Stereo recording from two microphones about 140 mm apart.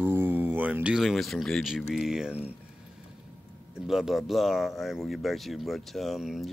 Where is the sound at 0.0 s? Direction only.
15° right (ahead or behind).